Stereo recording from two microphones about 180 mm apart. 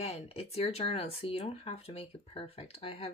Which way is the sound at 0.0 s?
35° left (ahead or behind).